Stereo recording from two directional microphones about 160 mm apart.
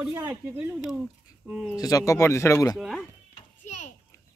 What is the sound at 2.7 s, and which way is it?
Speech, centre (ahead or behind).